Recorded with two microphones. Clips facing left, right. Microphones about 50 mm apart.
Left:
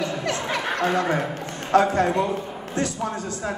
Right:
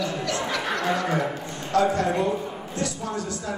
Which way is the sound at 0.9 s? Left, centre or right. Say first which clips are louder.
Left 2 dB; left.